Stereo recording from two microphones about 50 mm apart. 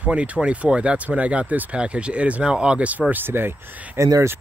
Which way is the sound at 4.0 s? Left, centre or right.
Right.